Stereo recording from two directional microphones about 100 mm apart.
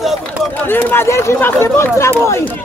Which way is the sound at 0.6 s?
20° left (ahead or behind).